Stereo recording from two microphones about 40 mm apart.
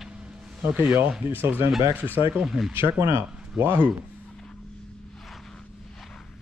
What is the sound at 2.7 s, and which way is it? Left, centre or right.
Speech, right.